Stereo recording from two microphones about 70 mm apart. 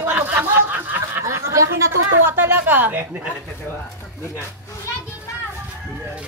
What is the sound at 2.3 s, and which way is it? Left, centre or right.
Speech, right.